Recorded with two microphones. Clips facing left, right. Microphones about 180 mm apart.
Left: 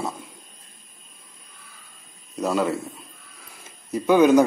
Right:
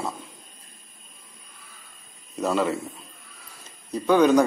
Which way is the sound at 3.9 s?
5° left (ahead or behind).